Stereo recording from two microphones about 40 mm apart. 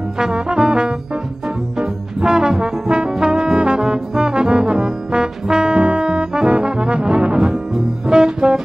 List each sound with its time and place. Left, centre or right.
0.2 s trombone: right
1.8 s brass instrument: centre
7.7 s music: centre